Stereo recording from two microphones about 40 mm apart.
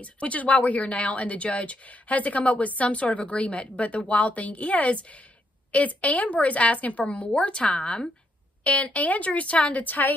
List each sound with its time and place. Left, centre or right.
0.0 s speech: left
8.6 s speech: left